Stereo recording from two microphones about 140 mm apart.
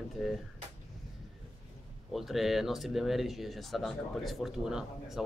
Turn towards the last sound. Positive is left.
turn(degrees=-5)  # may be behind; listen again after turning